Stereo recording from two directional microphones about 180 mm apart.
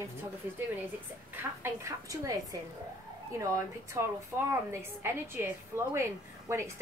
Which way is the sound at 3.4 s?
15° right (ahead or behind).